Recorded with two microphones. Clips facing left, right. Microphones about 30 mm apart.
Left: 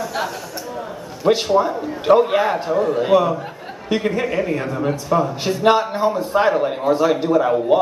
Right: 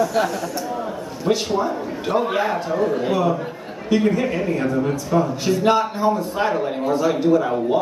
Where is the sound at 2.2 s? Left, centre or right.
Centre.